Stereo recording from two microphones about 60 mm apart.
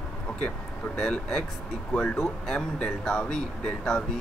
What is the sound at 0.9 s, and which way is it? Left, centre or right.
Speech, centre.